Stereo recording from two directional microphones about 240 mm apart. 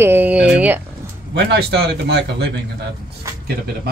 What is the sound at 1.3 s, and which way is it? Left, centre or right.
A man's voice, right.